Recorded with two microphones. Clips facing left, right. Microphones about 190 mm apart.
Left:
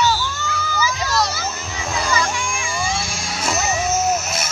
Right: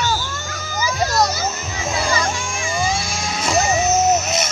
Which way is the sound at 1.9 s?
35° right (ahead or behind).